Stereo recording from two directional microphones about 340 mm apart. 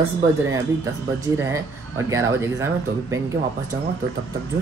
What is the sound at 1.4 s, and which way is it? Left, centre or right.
Speech, centre.